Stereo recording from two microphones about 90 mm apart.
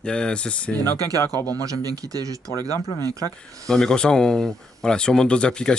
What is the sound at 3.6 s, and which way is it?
Speech, 5° left (ahead or behind).